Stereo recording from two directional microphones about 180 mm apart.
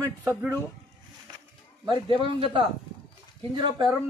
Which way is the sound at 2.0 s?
25° right (ahead or behind).